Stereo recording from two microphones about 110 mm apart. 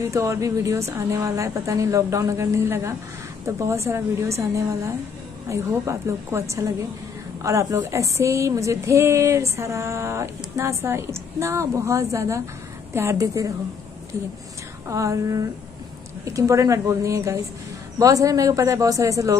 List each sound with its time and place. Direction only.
0.0 s speech: 30° right (ahead or behind)
14.9 s speech: 30° right (ahead or behind)